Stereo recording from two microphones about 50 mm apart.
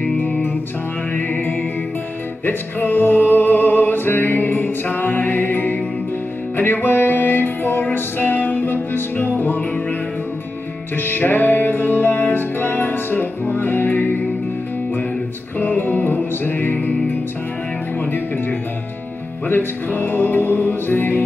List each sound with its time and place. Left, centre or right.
0.0 s music: left
11.0 s music: left
15.6 s music: left
19.4 s music: left